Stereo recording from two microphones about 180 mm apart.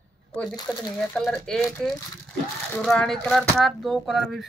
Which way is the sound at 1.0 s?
5° left (ahead or behind).